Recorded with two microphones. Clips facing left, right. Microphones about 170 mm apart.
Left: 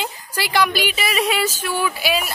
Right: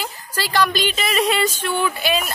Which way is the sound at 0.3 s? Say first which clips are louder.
Even; 10° left (ahead or behind).